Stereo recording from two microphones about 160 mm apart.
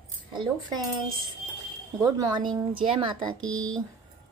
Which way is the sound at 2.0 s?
25° right (ahead or behind).